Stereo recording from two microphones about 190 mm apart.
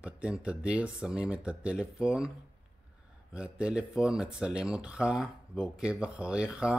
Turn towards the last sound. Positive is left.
turn(degrees=-5)  # may be behind; listen again after turning